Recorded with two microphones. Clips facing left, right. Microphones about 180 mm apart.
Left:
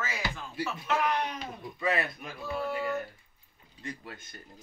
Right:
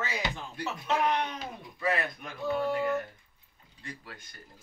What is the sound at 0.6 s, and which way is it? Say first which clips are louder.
Music: left 2 dB; 5° left (ahead or behind).